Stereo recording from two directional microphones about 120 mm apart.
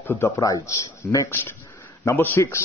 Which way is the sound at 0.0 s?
20° left (ahead or behind).